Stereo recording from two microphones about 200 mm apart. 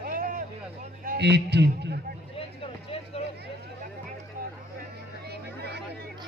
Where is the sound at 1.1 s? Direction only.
55° right (ahead or behind).